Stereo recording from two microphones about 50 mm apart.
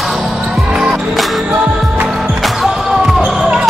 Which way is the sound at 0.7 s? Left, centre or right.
Right.